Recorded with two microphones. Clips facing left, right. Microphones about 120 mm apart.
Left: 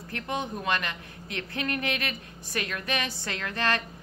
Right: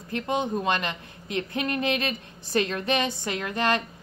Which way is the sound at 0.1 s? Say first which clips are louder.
Right 6 dB; 20° right (ahead or behind).